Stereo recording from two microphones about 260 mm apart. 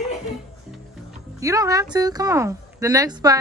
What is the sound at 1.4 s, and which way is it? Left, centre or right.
A woman's voice, centre.